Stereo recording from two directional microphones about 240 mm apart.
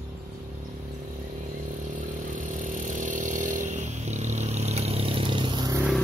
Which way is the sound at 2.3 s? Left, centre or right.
Right.